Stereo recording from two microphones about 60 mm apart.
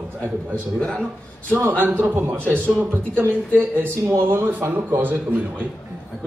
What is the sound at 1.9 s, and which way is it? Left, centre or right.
A man's voice, right.